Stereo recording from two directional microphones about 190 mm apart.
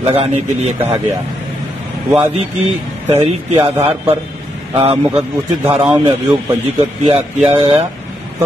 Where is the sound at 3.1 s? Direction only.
35° right (ahead or behind).